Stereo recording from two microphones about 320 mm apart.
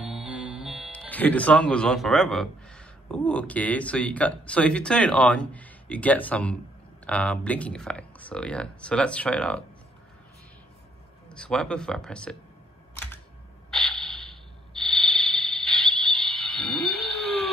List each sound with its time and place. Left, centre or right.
0.0 s speech: centre
11.2 s speech: centre
13.7 s a sound: centre